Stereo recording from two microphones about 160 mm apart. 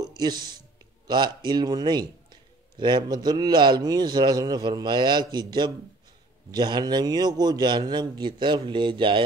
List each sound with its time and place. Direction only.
0.0 s a man's voice: 25° right (ahead or behind)